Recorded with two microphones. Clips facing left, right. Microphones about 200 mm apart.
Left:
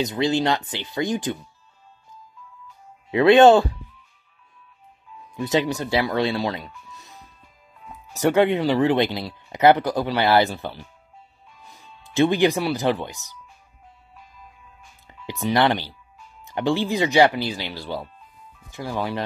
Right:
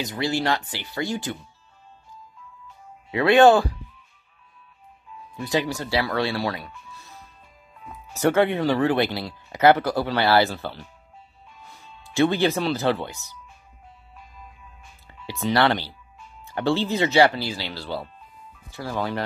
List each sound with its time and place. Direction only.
0.0 s speech: 20° left (ahead or behind)
3.1 s speech: 20° left (ahead or behind)
5.3 s speech: 20° left (ahead or behind)
15.2 s speech: 15° left (ahead or behind)